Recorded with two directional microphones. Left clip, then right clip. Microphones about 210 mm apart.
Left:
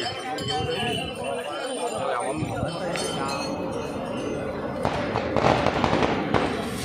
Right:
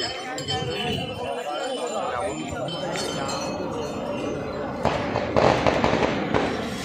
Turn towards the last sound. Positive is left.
turn(degrees=55)  # may be behind; listen again after turning